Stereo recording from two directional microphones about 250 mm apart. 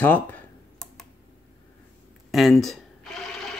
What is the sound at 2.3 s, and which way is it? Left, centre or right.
Cash register, centre.